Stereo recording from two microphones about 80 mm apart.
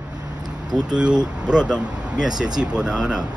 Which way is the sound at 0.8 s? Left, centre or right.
Centre.